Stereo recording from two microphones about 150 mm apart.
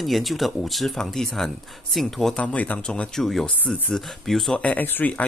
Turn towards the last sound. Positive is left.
turn(degrees=10)  # may be behind; listen again after turning